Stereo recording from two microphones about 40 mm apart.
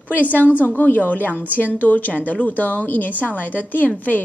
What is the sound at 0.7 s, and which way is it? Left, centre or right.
A woman's voice, left.